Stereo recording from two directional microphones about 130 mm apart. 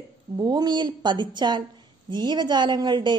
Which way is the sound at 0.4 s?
30° right (ahead or behind).